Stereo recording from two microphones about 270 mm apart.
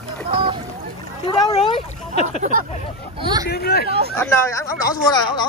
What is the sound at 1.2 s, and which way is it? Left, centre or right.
Speech, centre.